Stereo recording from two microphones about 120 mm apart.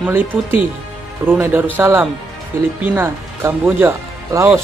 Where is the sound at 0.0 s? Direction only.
15° right (ahead or behind).